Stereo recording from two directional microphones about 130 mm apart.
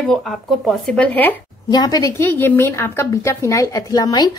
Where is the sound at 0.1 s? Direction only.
Centre (ahead or behind).